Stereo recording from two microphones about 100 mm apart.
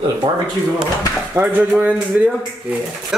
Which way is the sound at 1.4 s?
25° right (ahead or behind).